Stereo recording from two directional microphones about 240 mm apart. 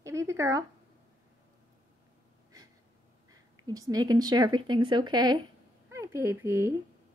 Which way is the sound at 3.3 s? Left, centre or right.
Centre.